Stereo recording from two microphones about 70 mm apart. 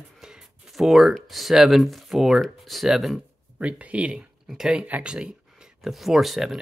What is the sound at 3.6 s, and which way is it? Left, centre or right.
Speech, centre.